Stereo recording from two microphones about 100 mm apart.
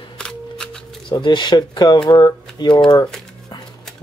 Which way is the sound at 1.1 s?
50° left (ahead or behind).